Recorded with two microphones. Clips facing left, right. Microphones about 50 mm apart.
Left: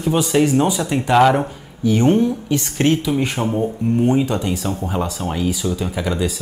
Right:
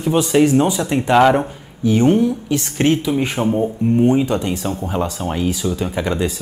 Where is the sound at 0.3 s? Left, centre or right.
Centre.